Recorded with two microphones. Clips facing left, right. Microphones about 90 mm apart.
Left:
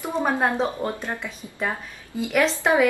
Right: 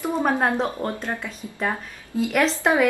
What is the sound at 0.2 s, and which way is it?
Speech, centre (ahead or behind).